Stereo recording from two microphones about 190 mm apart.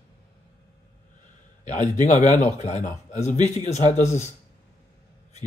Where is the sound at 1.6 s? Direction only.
40° left (ahead or behind).